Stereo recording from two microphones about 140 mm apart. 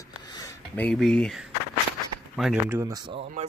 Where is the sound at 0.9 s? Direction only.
5° left (ahead or behind).